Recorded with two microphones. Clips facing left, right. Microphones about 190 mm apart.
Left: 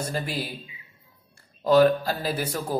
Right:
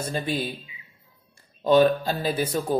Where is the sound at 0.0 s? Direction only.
25° right (ahead or behind).